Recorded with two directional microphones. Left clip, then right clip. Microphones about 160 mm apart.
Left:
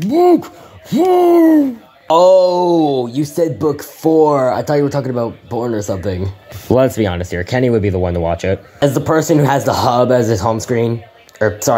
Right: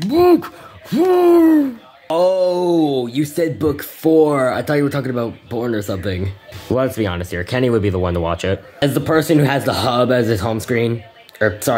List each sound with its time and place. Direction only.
0.1 s speech: centre (ahead or behind)
3.3 s speech: 15° right (ahead or behind)
4.9 s speech: centre (ahead or behind)
5.2 s speech: 15° right (ahead or behind)
6.0 s speech: 10° left (ahead or behind)
6.7 s speech: 25° left (ahead or behind); by 11.7 s 5° left (ahead or behind)